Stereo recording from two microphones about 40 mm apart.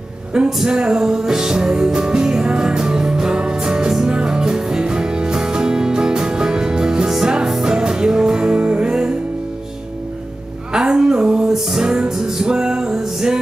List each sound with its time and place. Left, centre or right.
0.3 s speech: centre
0.7 s music: right
10.7 s a sound: right
11.5 s music: centre